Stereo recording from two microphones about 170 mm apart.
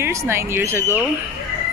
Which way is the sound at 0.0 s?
15° right (ahead or behind).